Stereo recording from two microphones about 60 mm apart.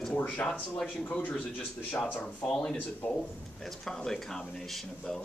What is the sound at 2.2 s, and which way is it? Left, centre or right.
Speech, centre.